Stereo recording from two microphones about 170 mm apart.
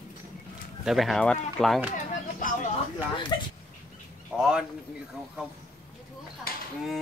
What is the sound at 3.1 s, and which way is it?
Speech, 30° left (ahead or behind).